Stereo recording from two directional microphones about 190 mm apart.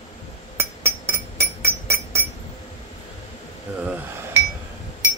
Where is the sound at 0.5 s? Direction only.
15° right (ahead or behind).